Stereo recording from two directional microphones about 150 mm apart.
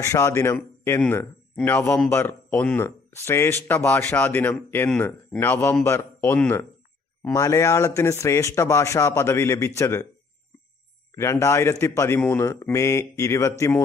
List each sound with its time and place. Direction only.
0.0 s speech: 20° left (ahead or behind)
11.1 s speech: 20° left (ahead or behind)